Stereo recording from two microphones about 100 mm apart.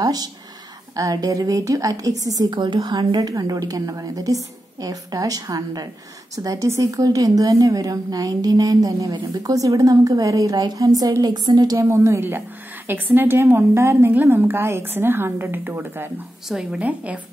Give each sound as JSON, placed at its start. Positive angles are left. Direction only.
{"t": 0.0, "sound": "a woman's voice", "side_deg": -40}
{"t": 2.5, "sound": "a woman's voice", "side_deg": -50}
{"t": 16.4, "sound": "a woman's voice", "side_deg": -10}